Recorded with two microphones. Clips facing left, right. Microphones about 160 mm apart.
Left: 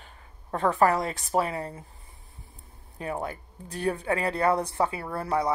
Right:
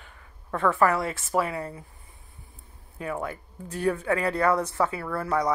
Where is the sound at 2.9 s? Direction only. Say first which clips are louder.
Right 1 dB; 25° left (ahead or behind).